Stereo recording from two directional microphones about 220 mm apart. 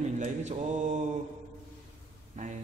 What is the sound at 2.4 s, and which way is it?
Speech, 35° right (ahead or behind).